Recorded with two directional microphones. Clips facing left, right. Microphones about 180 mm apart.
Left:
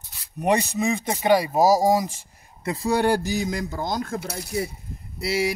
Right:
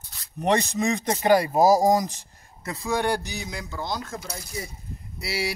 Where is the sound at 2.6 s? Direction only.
35° left (ahead or behind); by 4.7 s 60° left (ahead or behind).